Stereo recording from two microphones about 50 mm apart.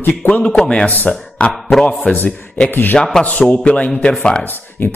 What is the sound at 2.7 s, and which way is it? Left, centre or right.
Speech, left.